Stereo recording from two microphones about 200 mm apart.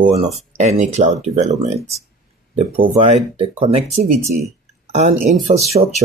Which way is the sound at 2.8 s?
30° right (ahead or behind).